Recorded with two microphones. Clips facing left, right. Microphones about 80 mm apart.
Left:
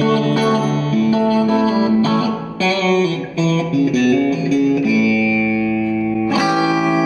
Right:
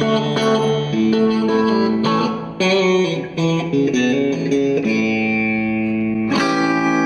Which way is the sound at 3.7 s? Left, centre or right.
Right.